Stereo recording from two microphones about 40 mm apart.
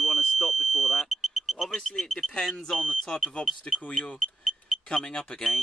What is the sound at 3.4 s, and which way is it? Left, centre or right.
Speech, left.